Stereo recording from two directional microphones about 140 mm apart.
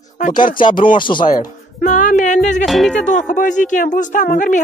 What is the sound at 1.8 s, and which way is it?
Music, 60° left (ahead or behind).